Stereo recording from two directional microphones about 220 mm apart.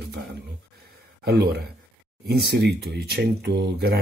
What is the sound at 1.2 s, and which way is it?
Speech, 45° right (ahead or behind).